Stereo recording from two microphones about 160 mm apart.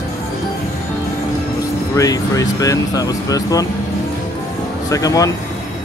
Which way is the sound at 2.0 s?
20° left (ahead or behind).